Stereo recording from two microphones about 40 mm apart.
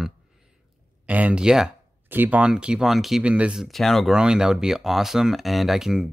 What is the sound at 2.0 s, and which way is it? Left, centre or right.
Speech, right.